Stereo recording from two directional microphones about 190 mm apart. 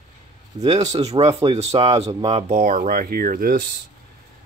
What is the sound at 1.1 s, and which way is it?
Speech, 25° right (ahead or behind).